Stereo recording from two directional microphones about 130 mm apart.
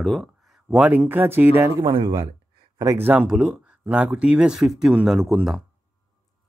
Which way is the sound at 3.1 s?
10° right (ahead or behind).